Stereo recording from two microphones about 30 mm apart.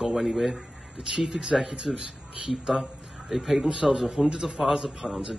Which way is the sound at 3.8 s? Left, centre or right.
Centre.